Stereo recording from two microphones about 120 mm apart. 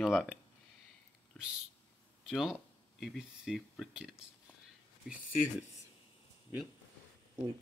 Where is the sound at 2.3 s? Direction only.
5° right (ahead or behind).